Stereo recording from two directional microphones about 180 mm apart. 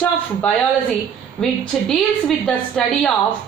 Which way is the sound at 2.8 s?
Centre (ahead or behind).